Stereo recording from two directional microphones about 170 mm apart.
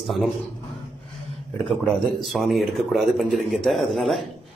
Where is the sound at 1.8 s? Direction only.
Centre (ahead or behind).